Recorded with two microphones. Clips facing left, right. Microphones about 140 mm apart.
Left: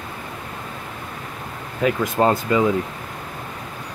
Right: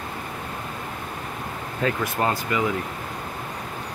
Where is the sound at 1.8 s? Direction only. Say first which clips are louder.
Left 4 dB; 10° left (ahead or behind).